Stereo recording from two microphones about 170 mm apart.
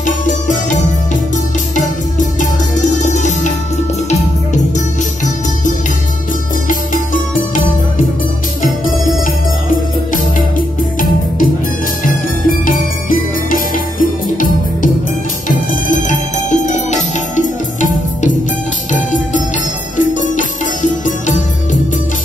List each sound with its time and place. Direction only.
0.0 s music: 50° left (ahead or behind)
2.9 s music: 45° left (ahead or behind)
4.7 s music: 50° left (ahead or behind)
8.8 s music: 50° left (ahead or behind)
12.0 s music: 55° left (ahead or behind)
15.4 s music: 50° left (ahead or behind)
20.0 s music: 50° left (ahead or behind)